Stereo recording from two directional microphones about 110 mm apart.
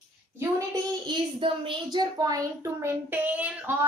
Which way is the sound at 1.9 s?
35° right (ahead or behind).